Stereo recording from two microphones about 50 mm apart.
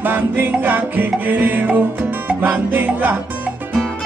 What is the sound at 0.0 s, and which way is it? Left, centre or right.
Music, right.